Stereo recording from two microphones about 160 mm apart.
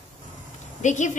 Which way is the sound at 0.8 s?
50° left (ahead or behind).